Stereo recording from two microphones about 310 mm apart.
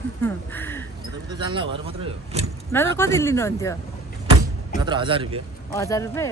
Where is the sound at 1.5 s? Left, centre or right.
Centre.